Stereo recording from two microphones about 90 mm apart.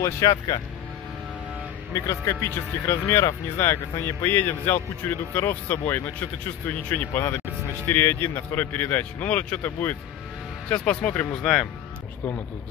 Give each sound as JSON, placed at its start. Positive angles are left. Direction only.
{"t": 0.0, "sound": "speech", "side_deg": 40}
{"t": 2.0, "sound": "speech", "side_deg": 35}